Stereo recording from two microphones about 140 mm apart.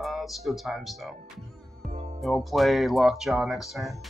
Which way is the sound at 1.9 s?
50° right (ahead or behind).